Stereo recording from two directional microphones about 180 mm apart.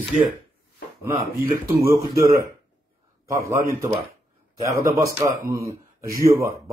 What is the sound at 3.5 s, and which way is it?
A man's voice, 15° right (ahead or behind).